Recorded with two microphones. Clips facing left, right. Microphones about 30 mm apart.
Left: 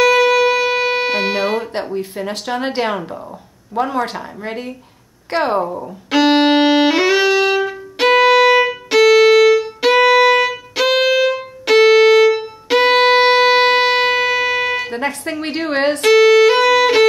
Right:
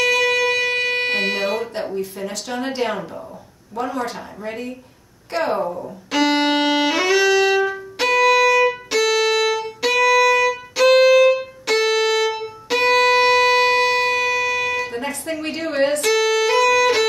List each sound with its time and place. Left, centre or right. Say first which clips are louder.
0.0 s shofar: left 5 dB; centre
0.7 s music: left 4 dB; left
1.0 s music: left 3 dB; centre
2.0 s speech: left 3 dB; left
5.8 s music: left 4 dB; left
8.0 s violin: left 4 dB; left; by 9.5 s centre
9.5 s violin: left 7 dB; left
11.8 s violin: left 10 dB; left
12.9 s music: left 2 dB; left
15.4 s speech: left 3 dB; left
16.0 s music: left 8 dB; left